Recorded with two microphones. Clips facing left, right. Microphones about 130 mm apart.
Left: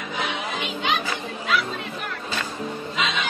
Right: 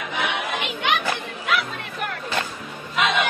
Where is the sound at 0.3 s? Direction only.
65° right (ahead or behind).